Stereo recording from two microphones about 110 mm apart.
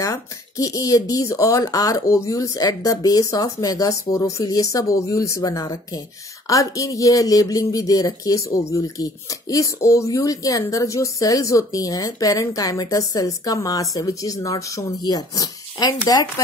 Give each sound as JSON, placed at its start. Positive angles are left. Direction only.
{"t": 0.0, "sound": "speech", "side_deg": 30}